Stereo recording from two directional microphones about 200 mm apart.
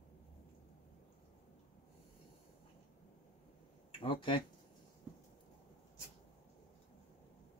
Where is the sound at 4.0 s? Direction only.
25° left (ahead or behind).